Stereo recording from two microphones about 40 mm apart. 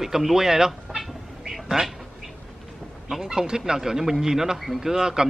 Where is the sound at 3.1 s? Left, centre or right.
Centre.